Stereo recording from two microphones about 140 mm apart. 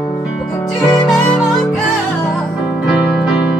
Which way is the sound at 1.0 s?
5° left (ahead or behind).